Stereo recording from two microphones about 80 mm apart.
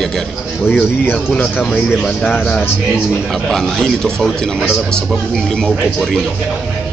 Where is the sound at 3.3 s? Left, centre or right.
Centre.